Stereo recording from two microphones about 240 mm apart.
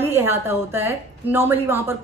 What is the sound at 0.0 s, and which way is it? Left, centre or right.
A woman's voice, centre.